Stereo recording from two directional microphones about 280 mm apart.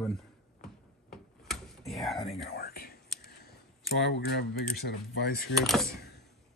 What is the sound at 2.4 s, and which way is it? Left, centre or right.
Whispering, left.